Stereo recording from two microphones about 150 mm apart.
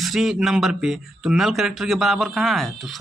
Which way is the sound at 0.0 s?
Centre (ahead or behind).